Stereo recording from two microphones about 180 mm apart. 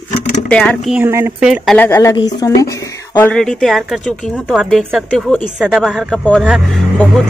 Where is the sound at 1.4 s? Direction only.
5° right (ahead or behind).